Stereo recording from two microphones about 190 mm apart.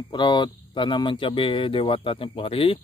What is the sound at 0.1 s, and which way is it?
Speech, 25° left (ahead or behind).